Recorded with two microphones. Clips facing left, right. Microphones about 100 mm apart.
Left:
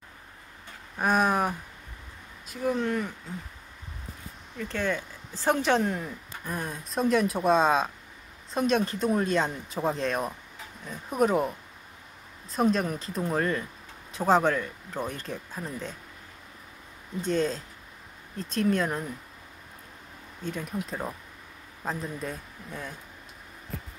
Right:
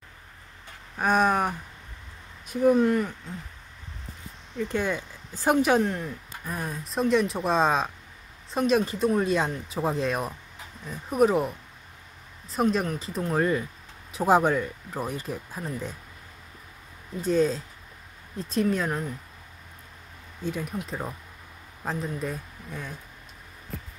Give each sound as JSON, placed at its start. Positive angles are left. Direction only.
{"t": 0.9, "sound": "speech", "side_deg": 0}
{"t": 2.4, "sound": "speech", "side_deg": -20}
{"t": 2.8, "sound": "speech", "side_deg": 0}
{"t": 4.6, "sound": "speech", "side_deg": -15}
{"t": 17.2, "sound": "speech", "side_deg": -5}
{"t": 20.4, "sound": "speech", "side_deg": -5}